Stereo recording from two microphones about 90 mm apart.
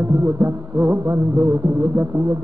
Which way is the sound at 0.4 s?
15° right (ahead or behind).